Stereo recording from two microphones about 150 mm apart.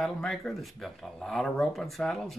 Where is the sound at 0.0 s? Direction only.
Centre (ahead or behind).